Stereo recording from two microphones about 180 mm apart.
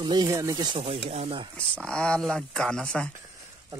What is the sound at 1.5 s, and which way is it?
Speech, 5° left (ahead or behind).